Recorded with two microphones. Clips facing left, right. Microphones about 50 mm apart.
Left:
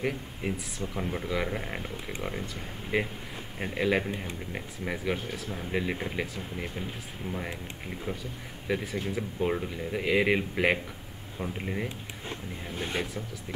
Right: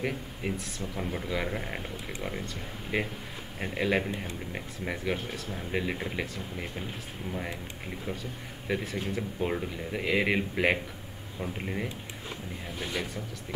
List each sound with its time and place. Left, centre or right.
0.0 s speech: centre
8.6 s speech: centre
12.7 s speech: left